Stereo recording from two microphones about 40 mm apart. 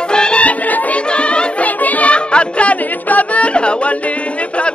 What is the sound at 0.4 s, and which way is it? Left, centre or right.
Music, left.